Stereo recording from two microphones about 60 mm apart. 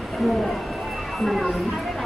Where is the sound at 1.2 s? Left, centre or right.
Centre.